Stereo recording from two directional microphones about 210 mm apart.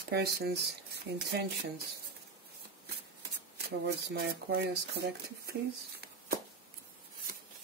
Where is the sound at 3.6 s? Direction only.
50° right (ahead or behind).